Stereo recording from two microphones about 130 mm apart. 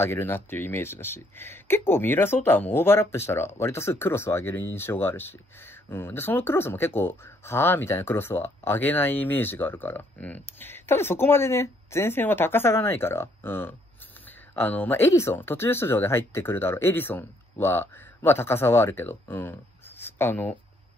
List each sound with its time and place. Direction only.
0.0 s speech: 15° left (ahead or behind)